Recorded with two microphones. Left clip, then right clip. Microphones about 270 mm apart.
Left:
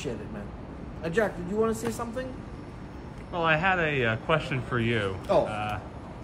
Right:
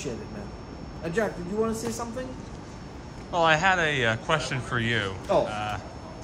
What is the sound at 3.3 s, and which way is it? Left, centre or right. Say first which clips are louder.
Speech: right 3 dB; centre.